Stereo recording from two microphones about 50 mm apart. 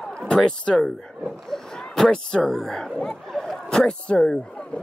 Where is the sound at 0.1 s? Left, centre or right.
Centre.